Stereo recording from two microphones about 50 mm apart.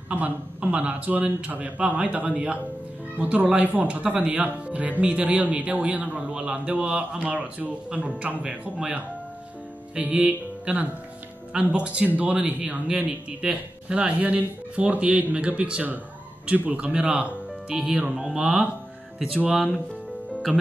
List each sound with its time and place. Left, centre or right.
0.1 s speech: right
10.1 s speech: centre
11.7 s speech: right; by 19.8 s centre